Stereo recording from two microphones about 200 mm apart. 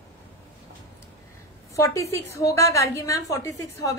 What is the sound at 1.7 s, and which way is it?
A woman's voice, 15° left (ahead or behind).